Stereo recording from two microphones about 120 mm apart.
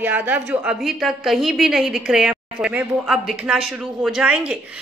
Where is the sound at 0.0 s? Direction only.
15° right (ahead or behind).